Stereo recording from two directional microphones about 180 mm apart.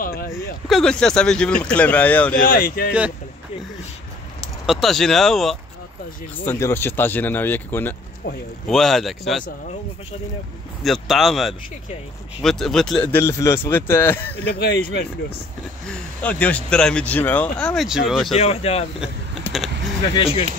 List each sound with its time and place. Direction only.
0.0 s a sound: 55° left (ahead or behind)
0.7 s speech: centre (ahead or behind)
2.3 s speech: 50° left (ahead or behind)
4.6 s speech: centre (ahead or behind)
6.3 s speech: 10° left (ahead or behind)
10.8 s speech: centre (ahead or behind)
14.5 s speech: 65° left (ahead or behind)
15.9 s speech: 10° left (ahead or behind)
18.3 s speech: 35° left (ahead or behind)
20.2 s speech: 30° left (ahead or behind)